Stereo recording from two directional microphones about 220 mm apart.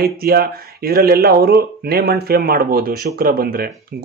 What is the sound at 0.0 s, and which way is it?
Speech, 45° right (ahead or behind).